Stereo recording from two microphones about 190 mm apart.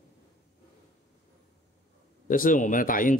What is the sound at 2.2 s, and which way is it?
Speech, 45° left (ahead or behind).